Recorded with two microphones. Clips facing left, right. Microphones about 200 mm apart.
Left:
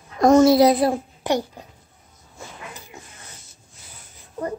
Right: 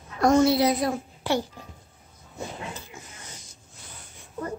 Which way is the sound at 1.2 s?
15° left (ahead or behind).